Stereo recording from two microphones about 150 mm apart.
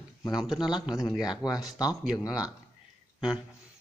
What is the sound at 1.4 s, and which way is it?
Speech, 25° left (ahead or behind).